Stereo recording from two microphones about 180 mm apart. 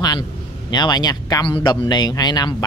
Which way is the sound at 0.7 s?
25° left (ahead or behind).